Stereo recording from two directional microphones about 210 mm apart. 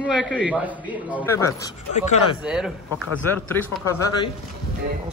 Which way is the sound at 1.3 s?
15° left (ahead or behind).